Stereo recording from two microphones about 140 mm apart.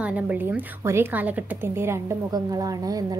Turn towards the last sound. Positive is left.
turn(degrees=-25)  # may be behind; listen again after turning